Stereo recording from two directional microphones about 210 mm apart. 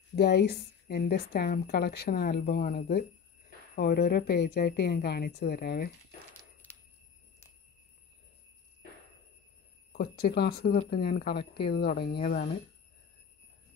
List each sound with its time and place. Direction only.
0.1 s a woman's voice: 50° left (ahead or behind)
6.6 s a sound: 10° left (ahead or behind)
9.9 s a woman's voice: 50° left (ahead or behind)